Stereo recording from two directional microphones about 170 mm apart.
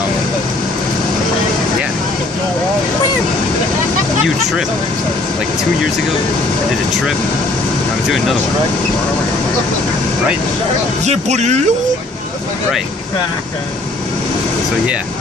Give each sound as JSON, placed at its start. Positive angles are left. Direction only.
{"t": 11.1, "sound": "speech", "side_deg": -40}